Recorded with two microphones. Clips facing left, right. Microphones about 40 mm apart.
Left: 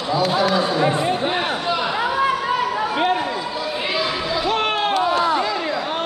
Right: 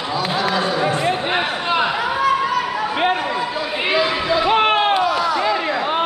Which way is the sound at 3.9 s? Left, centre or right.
Right.